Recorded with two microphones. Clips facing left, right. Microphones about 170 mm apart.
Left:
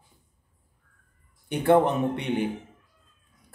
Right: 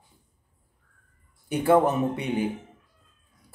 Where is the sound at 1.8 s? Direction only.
Centre (ahead or behind).